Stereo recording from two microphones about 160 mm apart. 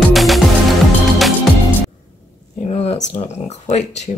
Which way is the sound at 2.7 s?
40° left (ahead or behind).